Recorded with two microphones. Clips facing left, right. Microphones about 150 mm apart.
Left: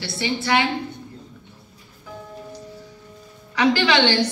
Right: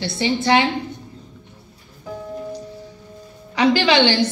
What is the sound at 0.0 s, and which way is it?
Speech, 25° right (ahead or behind).